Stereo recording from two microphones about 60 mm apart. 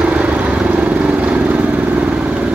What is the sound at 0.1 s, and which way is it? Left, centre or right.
Vehicle, right.